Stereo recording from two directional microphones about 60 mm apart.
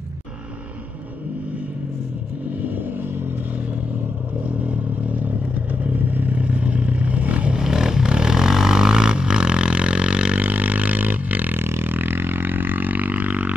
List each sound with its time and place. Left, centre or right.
2.6 s vehicle: right
4.6 s vehicle: right
7.5 s vehicle: centre
10.4 s a sound: right